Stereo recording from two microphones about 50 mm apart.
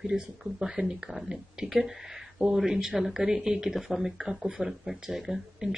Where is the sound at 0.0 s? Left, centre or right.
Centre.